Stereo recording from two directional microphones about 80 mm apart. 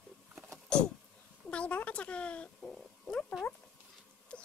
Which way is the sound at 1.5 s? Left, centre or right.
Centre.